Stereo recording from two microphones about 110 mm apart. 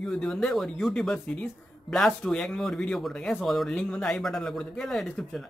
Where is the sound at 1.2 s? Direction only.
15° left (ahead or behind).